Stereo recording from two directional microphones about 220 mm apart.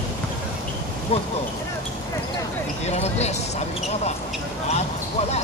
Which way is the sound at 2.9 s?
30° left (ahead or behind).